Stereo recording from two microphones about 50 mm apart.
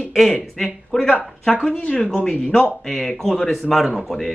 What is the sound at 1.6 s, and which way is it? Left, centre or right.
A man's voice, left.